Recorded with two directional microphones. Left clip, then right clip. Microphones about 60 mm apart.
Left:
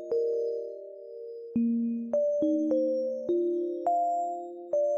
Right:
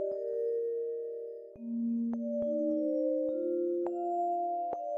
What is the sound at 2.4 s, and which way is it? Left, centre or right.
Electric piano, left.